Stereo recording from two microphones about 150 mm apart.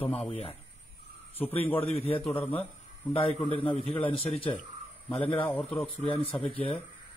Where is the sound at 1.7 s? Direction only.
40° left (ahead or behind).